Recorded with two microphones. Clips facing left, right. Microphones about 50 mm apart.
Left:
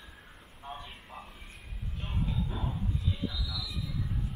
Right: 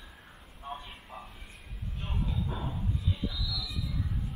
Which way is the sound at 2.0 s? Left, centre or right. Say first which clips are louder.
Left 1 dB; centre.